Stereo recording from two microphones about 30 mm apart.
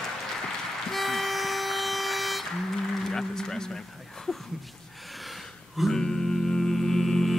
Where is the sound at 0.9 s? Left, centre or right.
Centre.